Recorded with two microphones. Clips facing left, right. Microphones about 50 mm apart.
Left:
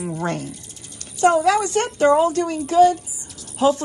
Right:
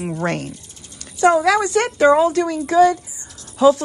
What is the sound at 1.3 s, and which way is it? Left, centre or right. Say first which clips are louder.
Speech: right 2 dB; right.